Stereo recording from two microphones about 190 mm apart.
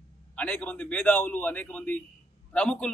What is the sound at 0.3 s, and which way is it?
A man's voice, 5° left (ahead or behind).